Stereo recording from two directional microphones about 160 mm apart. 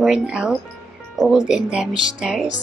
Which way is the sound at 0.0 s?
5° right (ahead or behind).